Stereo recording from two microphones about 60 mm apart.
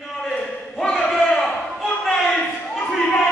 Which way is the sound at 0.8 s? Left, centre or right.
Centre.